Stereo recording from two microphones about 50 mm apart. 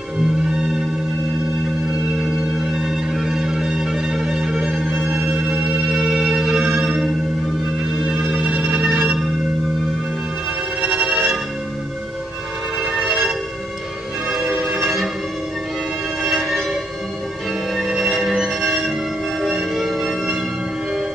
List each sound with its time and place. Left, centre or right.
2.6 s music: centre
5.3 s music: right
8.3 s music: centre
8.8 s music: centre
10.8 s music: centre
12.9 s a sound: centre
14.8 s music: centre
16.3 s a sound: centre
17.7 s music: centre